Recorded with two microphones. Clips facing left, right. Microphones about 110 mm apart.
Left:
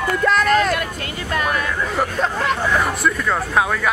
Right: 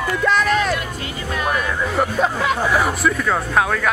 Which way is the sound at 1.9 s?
5° right (ahead or behind).